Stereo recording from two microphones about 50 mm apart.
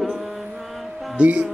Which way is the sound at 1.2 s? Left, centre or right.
Right.